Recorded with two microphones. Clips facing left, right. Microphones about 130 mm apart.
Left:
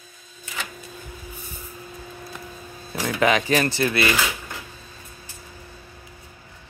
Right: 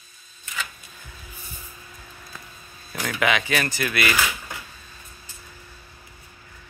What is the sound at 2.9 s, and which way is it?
Speech, 30° left (ahead or behind).